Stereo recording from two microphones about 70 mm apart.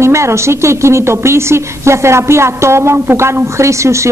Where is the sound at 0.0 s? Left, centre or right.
Right.